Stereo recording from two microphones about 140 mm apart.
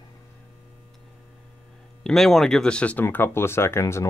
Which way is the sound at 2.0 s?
Centre (ahead or behind).